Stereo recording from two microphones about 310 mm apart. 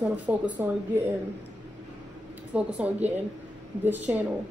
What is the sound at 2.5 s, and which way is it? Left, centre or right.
Speech, centre.